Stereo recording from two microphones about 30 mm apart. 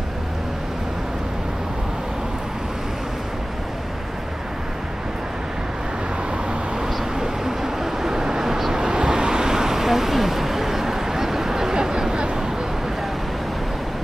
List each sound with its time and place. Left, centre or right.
7.2 s vehicle: centre